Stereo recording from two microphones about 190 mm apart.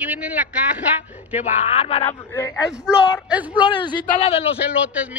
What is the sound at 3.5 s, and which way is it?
Speech, 25° left (ahead or behind).